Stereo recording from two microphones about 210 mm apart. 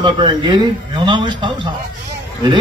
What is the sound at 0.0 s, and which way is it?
A man's voice, 20° right (ahead or behind).